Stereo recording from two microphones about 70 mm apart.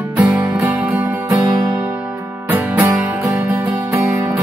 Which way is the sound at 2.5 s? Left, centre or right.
Right.